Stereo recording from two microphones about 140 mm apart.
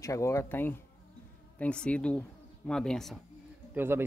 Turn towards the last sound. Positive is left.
turn(degrees=-15)  # may be behind; listen again after turning